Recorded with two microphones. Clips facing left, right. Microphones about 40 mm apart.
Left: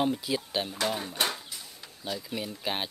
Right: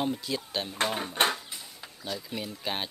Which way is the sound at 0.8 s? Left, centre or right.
Right.